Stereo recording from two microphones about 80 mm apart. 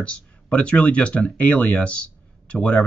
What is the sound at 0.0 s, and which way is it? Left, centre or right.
Speech, centre.